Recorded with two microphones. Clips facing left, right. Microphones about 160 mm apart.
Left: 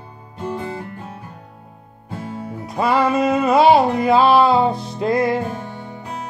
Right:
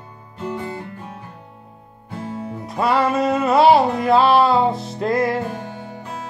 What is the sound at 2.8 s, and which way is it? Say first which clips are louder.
Music: left 1 dB; centre (ahead or behind).